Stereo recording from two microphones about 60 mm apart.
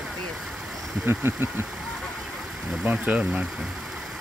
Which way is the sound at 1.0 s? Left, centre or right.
Right.